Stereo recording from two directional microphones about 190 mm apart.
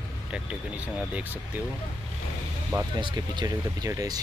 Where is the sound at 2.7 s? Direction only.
20° right (ahead or behind).